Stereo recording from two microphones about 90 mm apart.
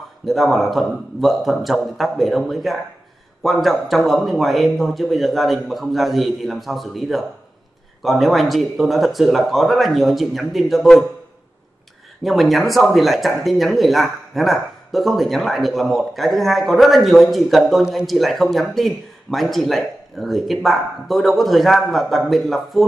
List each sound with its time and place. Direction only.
0.2 s speech: centre (ahead or behind)
12.2 s speech: centre (ahead or behind)